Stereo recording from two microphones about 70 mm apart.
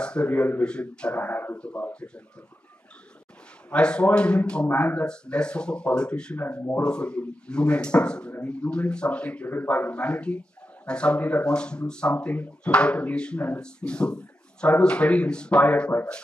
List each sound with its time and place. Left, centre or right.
0.0 s speech: centre
0.3 s a man's voice: left
1.2 s a man's voice: left
3.7 s speech: centre